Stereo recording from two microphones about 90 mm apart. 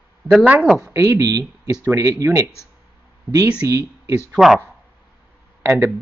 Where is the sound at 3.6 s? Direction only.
40° right (ahead or behind).